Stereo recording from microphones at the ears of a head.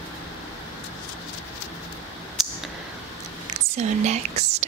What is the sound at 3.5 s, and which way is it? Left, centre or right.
Whispering, right.